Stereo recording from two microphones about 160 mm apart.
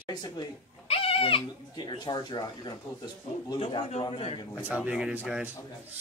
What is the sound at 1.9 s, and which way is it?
Speech, 25° left (ahead or behind).